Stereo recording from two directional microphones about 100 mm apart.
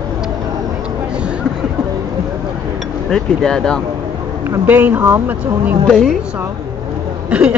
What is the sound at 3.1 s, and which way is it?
Speech, 5° left (ahead or behind).